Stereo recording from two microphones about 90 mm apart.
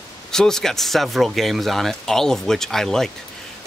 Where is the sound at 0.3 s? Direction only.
5° left (ahead or behind).